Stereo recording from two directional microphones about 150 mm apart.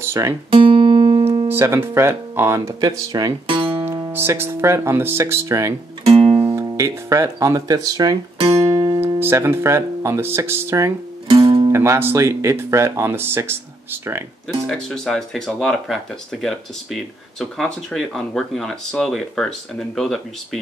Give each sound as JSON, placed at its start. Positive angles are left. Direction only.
{"t": 0.5, "sound": "music", "side_deg": -35}
{"t": 1.5, "sound": "speech", "side_deg": -15}
{"t": 3.8, "sound": "speech", "side_deg": -20}
{"t": 6.0, "sound": "music", "side_deg": -40}
{"t": 6.5, "sound": "speech", "side_deg": -20}
{"t": 8.5, "sound": "music", "side_deg": -25}
{"t": 9.2, "sound": "speech", "side_deg": -15}
{"t": 11.2, "sound": "music", "side_deg": -35}
{"t": 11.7, "sound": "speech", "side_deg": -15}
{"t": 14.7, "sound": "speech", "side_deg": 5}